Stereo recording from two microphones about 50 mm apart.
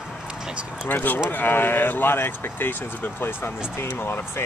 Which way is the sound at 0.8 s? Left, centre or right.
Left.